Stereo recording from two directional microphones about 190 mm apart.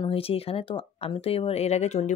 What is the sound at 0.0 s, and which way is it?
A woman's voice, 30° left (ahead or behind).